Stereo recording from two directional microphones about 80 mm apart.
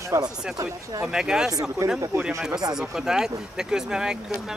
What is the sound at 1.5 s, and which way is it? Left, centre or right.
Speech, right.